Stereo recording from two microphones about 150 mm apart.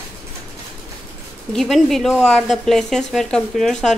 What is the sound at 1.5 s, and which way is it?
A woman's voice, centre (ahead or behind).